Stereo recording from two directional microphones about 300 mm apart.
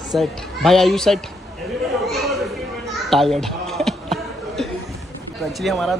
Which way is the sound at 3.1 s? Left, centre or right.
Centre.